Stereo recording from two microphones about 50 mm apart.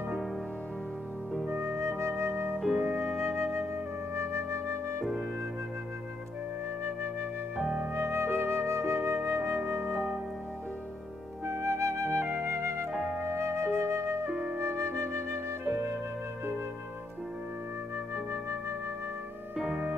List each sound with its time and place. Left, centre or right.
1.8 s flute: right
2.6 s music: centre
3.2 s flute: right
4.1 s music: right
7.9 s flute: right
9.7 s music: right
11.4 s flute: right
14.3 s flute: centre
14.6 s music: right
18.1 s music: right
19.5 s music: centre